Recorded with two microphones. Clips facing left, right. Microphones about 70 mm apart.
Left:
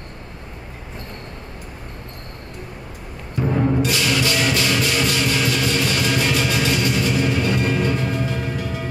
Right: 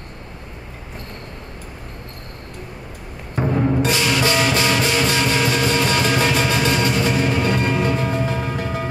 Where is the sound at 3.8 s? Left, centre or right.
Right.